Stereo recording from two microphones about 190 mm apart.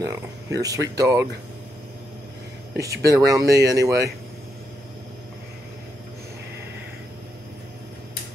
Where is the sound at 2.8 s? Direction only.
15° right (ahead or behind).